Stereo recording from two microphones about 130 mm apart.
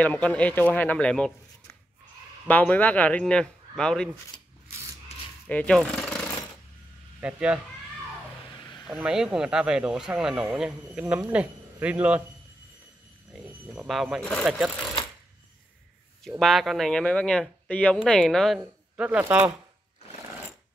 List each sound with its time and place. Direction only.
0.0 s speech: 10° left (ahead or behind)
2.4 s speech: 10° left (ahead or behind)
4.3 s rub: 35° left (ahead or behind)
5.5 s speech: 10° left (ahead or behind)
5.9 s jackhammer: 5° left (ahead or behind)
7.2 s speech: 10° right (ahead or behind)
8.8 s speech: 5° right (ahead or behind)
13.3 s speech: 5° right (ahead or behind)
16.3 s speech: centre (ahead or behind)
18.9 s speech: 15° right (ahead or behind)